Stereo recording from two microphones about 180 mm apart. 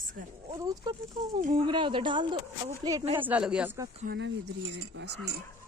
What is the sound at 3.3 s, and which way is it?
Speech, 5° right (ahead or behind).